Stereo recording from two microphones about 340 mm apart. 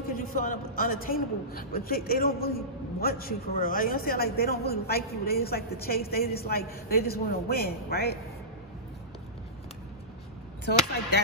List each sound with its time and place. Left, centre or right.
0.1 s a man's voice: left
10.6 s a man's voice: left